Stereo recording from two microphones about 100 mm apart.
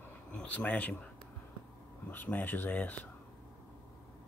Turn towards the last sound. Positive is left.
turn(degrees=15)  # may be behind; listen again after turning